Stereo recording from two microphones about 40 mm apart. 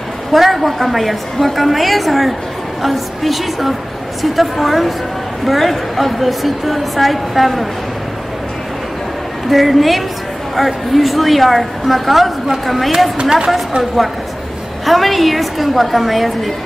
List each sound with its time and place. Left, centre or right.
0.3 s a woman's voice: centre
9.5 s a woman's voice: centre
13.2 s speech: centre
14.9 s a woman's voice: centre